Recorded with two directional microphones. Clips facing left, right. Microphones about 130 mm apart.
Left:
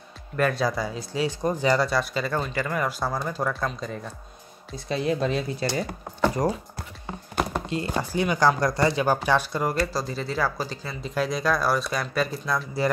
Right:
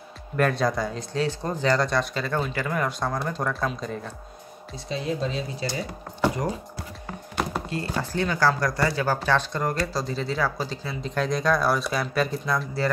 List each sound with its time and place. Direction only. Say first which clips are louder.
0.4 s speech: right 1 dB; centre (ahead or behind)
4.7 s speech: left 3 dB; 60° left (ahead or behind)
7.7 s speech: left 3 dB; 20° left (ahead or behind); by 12.6 s centre (ahead or behind)